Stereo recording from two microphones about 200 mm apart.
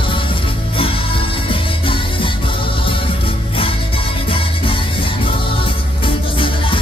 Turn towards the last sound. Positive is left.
turn(degrees=25)  # may be behind; listen again after turning